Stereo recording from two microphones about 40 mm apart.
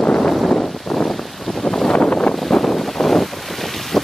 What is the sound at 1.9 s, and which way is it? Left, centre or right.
Vehicle, left.